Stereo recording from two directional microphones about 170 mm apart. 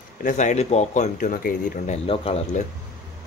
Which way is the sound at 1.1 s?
55° left (ahead or behind).